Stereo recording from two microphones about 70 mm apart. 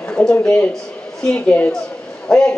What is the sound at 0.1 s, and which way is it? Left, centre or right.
A woman's voice, centre.